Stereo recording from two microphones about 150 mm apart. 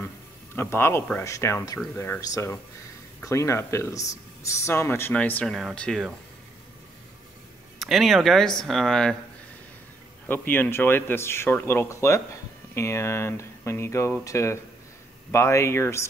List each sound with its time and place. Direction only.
0.6 s speech: 15° left (ahead or behind)
7.8 s speech: centre (ahead or behind)
10.2 s speech: 15° left (ahead or behind)